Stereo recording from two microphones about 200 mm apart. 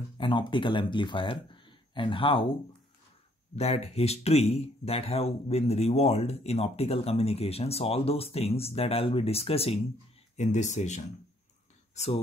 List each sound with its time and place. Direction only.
0.2 s speech: 25° left (ahead or behind)
3.5 s speech: 30° left (ahead or behind)